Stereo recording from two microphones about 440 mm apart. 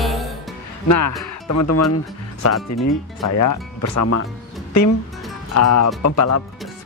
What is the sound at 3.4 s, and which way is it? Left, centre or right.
Speech, left.